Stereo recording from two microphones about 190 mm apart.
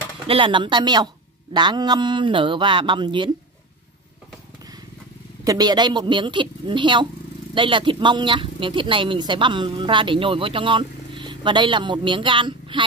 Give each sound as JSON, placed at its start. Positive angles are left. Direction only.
{"t": 0.3, "sound": "a woman's voice", "side_deg": -25}
{"t": 5.4, "sound": "a woman's voice", "side_deg": -20}